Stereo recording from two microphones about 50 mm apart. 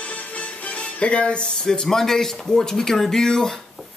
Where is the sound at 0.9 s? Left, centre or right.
Left.